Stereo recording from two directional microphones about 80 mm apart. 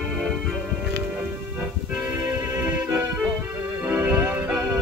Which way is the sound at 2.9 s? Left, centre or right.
Centre.